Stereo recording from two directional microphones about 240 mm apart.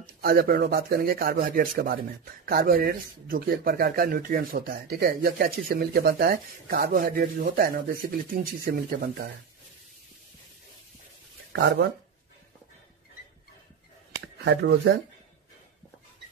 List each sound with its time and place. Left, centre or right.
0.0 s speech: right
11.5 s speech: right